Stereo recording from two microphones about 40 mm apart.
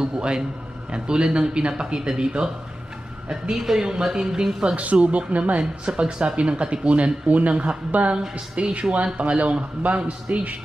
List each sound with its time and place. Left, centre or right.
0.0 s a woman's voice: right
4.7 s a man's voice: right
5.6 s a man's voice: right
10.3 s a man's voice: right